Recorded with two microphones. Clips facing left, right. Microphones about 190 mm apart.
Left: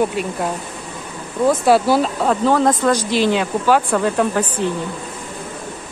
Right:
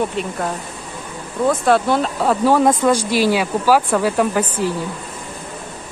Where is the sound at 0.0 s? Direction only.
5° left (ahead or behind).